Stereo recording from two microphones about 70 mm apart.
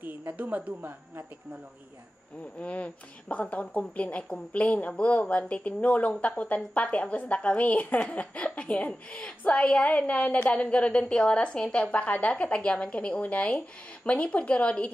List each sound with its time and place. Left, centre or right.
0.3 s speech: right
2.6 s speech: centre